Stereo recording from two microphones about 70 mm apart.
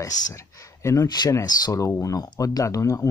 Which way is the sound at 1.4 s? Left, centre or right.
Left.